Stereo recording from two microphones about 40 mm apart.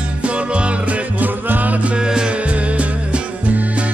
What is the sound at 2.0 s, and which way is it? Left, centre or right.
Music, centre.